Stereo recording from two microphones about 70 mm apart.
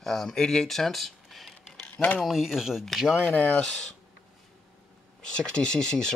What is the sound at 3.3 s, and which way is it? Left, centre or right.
Speech, left.